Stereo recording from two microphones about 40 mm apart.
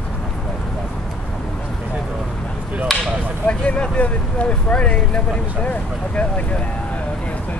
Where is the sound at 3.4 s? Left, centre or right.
Left.